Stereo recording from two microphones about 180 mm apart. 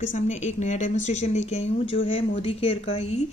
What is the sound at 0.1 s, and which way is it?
A woman's voice, 40° left (ahead or behind).